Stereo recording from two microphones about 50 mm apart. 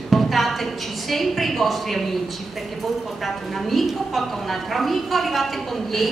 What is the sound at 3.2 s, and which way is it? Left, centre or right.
A woman's voice, centre.